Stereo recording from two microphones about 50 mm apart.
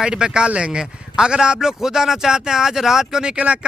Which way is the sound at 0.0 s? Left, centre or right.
Centre.